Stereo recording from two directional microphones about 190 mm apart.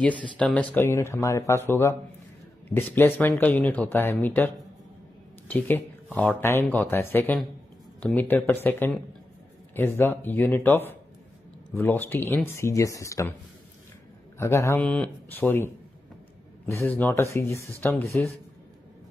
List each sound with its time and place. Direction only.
0.0 s speech: 5° left (ahead or behind)
5.5 s speech: 10° left (ahead or behind)
14.4 s speech: 15° left (ahead or behind)